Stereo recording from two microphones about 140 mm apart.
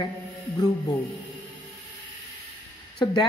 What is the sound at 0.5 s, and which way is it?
Speech, 25° left (ahead or behind).